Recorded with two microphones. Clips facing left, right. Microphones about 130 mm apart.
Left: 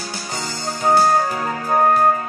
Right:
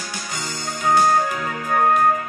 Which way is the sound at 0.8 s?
35° left (ahead or behind).